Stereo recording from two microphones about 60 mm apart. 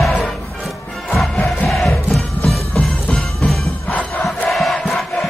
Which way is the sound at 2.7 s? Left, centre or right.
Centre.